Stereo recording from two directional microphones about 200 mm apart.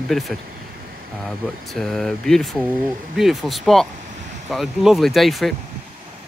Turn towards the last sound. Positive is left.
turn(degrees=0)  # may be behind; listen again after turning